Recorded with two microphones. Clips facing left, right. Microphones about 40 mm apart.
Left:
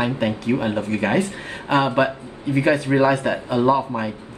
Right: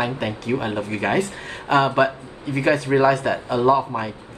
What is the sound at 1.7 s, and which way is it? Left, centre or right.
A man's voice, centre.